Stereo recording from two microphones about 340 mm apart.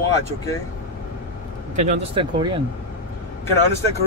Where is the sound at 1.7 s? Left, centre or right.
Centre.